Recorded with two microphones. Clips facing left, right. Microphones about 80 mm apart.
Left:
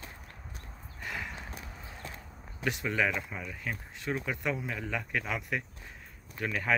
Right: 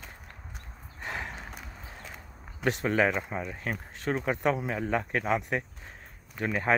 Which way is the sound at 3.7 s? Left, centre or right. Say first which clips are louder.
Right 3 dB; right.